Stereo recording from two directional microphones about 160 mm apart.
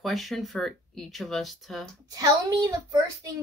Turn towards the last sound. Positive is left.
turn(degrees=-20)  # may be behind; listen again after turning